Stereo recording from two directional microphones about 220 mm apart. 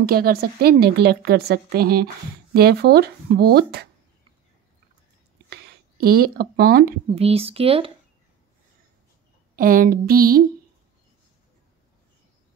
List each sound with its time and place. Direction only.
0.0 s a woman's voice: 45° right (ahead or behind)
5.5 s speech: 45° right (ahead or behind)
7.2 s speech: 25° right (ahead or behind)
9.6 s a sound: 40° right (ahead or behind)